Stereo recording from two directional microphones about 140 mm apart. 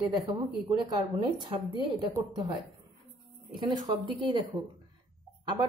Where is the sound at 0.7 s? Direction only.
30° right (ahead or behind).